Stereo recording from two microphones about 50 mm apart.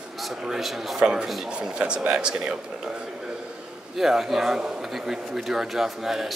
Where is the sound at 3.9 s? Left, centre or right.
Centre.